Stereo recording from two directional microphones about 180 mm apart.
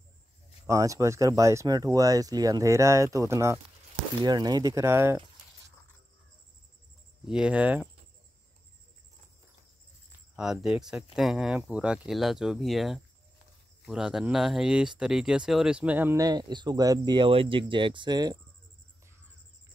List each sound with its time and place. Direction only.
0.7 s speech: 20° right (ahead or behind)
7.2 s speech: 5° right (ahead or behind)
10.3 s speech: 5° right (ahead or behind); by 18.4 s 25° right (ahead or behind)